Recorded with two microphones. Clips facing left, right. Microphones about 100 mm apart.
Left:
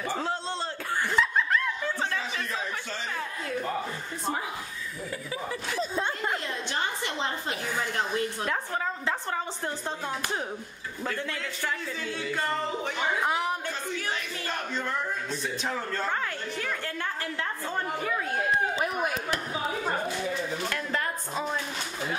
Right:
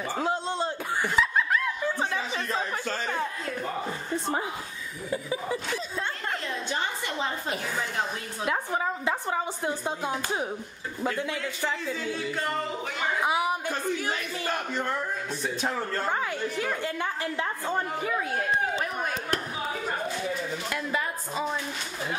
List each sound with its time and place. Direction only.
0.2 s a sound: 15° right (ahead or behind)
1.1 s laughter: 5° right (ahead or behind)
5.1 s speech: 20° right (ahead or behind)
6.7 s a sound: 5° right (ahead or behind)
8.1 s a woman's voice: 10° right (ahead or behind)
13.2 s a woman's voice: 10° right (ahead or behind)
16.1 s a woman's voice: 15° right (ahead or behind)
18.8 s speech: 10° left (ahead or behind)
20.7 s a woman's voice: 5° right (ahead or behind)